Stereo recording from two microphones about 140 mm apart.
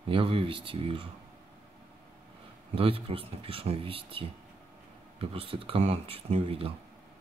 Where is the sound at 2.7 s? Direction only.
40° right (ahead or behind).